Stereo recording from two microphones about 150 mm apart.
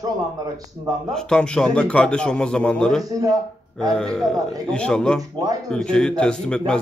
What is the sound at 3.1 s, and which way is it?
Speech, 25° right (ahead or behind).